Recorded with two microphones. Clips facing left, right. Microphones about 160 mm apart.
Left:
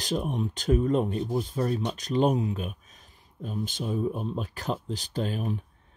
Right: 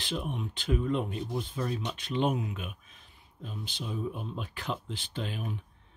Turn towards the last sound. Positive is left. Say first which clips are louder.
# left 6 dB
turn(degrees=40)  # may be behind; listen again after turning